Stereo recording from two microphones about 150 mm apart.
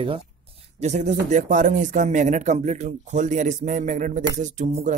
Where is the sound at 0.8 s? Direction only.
50° right (ahead or behind).